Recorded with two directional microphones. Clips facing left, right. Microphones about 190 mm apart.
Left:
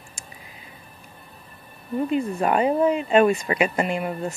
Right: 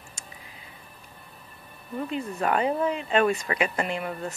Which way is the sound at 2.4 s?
15° left (ahead or behind).